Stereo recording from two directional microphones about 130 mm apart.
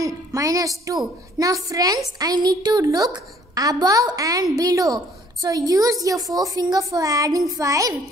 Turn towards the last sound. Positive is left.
turn(degrees=-25)  # may be behind; listen again after turning